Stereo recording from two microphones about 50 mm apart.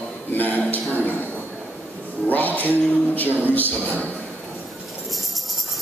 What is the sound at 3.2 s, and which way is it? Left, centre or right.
Speech, right.